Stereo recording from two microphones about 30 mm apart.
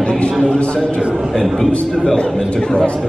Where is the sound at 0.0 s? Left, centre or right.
Left.